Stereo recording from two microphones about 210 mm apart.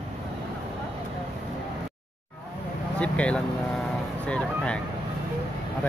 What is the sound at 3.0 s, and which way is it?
Vehicle, 5° left (ahead or behind).